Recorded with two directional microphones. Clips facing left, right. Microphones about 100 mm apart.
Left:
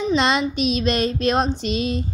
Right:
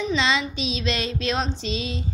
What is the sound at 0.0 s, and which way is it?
Child singing, 50° left (ahead or behind).